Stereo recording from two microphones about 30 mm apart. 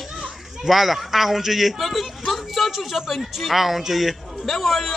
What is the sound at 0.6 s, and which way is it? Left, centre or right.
A man's voice, centre.